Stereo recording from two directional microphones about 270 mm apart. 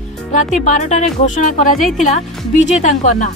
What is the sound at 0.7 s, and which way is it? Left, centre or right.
Speech, left.